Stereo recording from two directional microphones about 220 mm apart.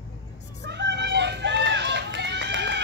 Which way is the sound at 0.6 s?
50° right (ahead or behind).